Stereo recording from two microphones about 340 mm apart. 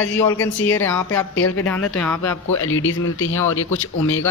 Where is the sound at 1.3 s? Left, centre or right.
Left.